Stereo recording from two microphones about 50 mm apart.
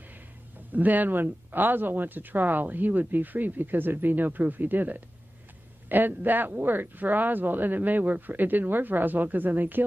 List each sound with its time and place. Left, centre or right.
0.7 s speech: right